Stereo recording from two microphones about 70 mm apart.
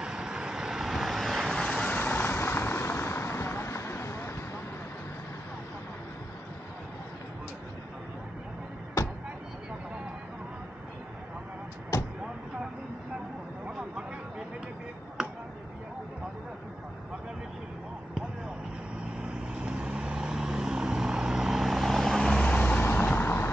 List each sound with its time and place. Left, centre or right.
0.0 s vehicle: centre
1.5 s vehicle: centre
1.9 s vehicle: left
15.2 s a sound: centre
19.2 s vehicle: centre
22.8 s vehicle: left